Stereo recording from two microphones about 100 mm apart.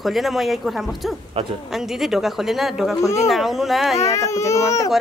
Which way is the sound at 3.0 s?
30° left (ahead or behind).